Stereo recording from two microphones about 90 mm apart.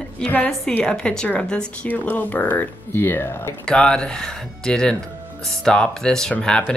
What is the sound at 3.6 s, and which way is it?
Speech, 10° left (ahead or behind).